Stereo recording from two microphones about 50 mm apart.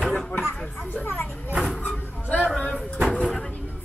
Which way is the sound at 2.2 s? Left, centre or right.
Left.